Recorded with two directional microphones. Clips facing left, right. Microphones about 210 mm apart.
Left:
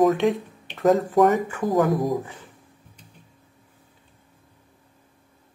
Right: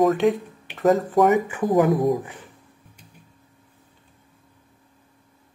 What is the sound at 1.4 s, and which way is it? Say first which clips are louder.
Speech: right 2 dB; 15° right (ahead or behind).